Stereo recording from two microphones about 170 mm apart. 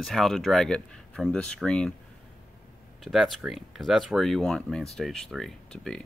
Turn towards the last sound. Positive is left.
turn(degrees=5)  # may be behind; listen again after turning